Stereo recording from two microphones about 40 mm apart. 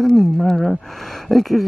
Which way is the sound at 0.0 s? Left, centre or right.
Centre.